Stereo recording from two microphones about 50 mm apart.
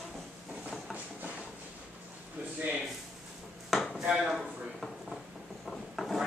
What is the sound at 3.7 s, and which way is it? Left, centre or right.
Dishes, centre.